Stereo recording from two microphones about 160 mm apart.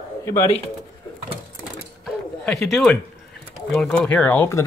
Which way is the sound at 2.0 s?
5° left (ahead or behind).